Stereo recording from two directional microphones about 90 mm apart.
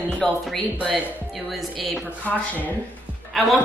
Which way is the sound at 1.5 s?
Centre (ahead or behind).